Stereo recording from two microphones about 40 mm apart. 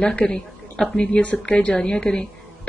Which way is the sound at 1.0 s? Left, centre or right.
Left.